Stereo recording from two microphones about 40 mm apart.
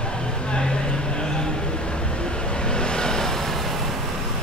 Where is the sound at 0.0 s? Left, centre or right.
Left; by 4.0 s centre.